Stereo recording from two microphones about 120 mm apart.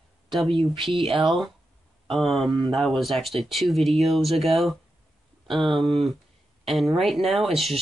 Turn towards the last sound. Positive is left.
turn(degrees=0)  # may be behind; listen again after turning